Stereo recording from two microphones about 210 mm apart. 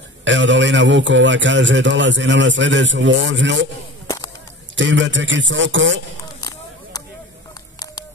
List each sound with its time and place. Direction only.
0.2 s a man's voice: 60° right (ahead or behind)
4.7 s a man's voice: 60° right (ahead or behind)